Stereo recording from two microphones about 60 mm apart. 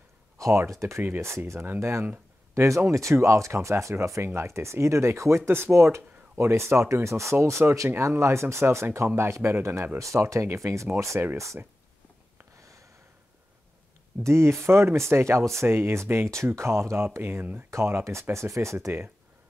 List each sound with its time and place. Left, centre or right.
0.4 s speech: right
9.9 s speech: right
14.2 s speech: right
17.6 s speech: right